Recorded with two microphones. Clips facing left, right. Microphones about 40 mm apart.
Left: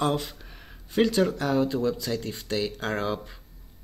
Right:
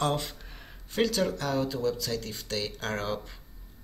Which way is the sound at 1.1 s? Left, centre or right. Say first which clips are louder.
Left 4 dB; centre.